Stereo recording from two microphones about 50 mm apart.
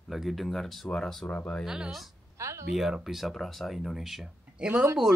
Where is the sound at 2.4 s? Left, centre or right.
Right.